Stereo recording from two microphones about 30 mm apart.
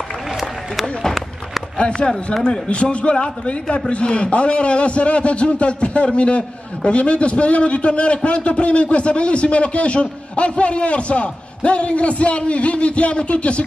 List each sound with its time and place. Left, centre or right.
1.8 s a man's voice: left